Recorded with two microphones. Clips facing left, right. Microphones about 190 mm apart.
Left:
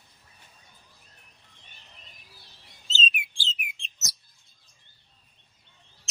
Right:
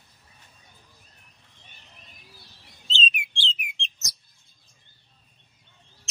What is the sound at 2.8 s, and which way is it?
Chirp, 5° left (ahead or behind).